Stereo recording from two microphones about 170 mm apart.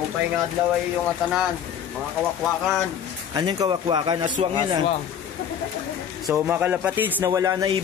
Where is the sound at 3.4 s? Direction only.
25° right (ahead or behind).